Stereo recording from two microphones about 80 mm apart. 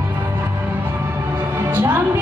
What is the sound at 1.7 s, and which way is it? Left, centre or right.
Music, right.